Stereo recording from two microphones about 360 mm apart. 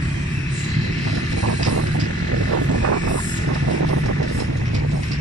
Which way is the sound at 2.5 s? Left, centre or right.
Right.